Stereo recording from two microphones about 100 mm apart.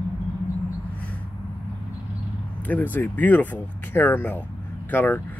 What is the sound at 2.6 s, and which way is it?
Speech, 15° left (ahead or behind).